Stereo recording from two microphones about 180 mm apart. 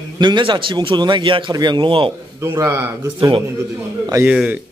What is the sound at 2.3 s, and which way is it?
A man's voice, 15° right (ahead or behind).